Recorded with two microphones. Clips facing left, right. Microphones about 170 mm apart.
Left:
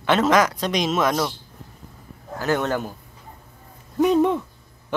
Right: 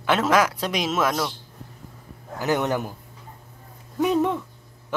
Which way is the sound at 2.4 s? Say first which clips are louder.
Left 1 dB; 15° right (ahead or behind).